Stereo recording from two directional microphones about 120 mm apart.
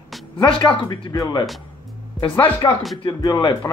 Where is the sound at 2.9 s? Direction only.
35° left (ahead or behind).